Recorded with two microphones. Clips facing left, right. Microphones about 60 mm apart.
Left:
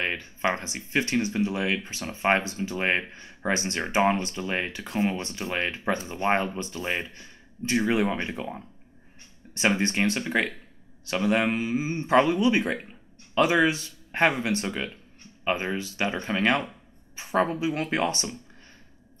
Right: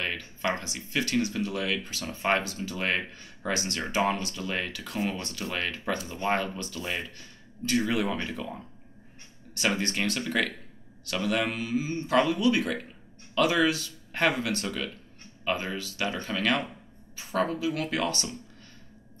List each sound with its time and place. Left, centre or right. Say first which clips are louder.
0.0 s speech: left 3 dB; left